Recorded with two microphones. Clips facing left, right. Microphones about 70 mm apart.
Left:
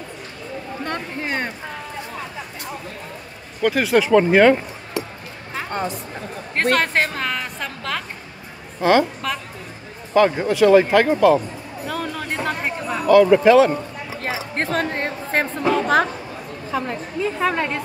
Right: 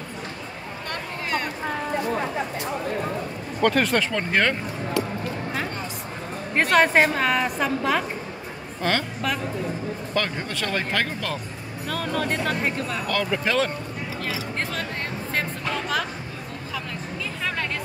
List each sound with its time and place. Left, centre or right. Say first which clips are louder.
0.8 s a sound: left 3 dB; left
3.6 s speech: left 3 dB; centre
6.5 s a woman's voice: right 1 dB; centre
8.8 s speech: left 8 dB; centre
10.1 s speech: left 12 dB; centre
14.2 s music: left 5 dB; left
15.7 s a sound: left 9 dB; left
16.7 s a woman's voice: left 9 dB; left